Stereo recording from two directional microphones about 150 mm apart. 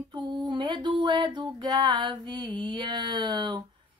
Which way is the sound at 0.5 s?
30° right (ahead or behind).